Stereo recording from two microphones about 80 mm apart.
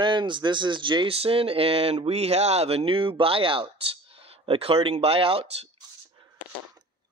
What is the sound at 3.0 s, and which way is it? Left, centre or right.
Speech, right.